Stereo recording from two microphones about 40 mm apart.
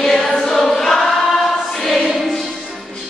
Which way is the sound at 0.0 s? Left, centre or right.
Centre.